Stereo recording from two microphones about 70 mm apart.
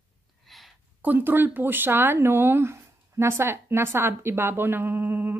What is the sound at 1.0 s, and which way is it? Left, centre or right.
Speech, right.